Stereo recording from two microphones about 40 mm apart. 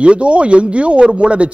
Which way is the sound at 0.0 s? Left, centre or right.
Right.